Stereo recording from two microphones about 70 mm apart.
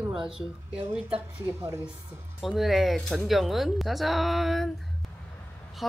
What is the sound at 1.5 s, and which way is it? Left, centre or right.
Speech, right.